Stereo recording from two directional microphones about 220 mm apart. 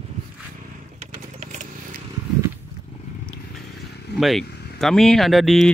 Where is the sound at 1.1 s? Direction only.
35° right (ahead or behind).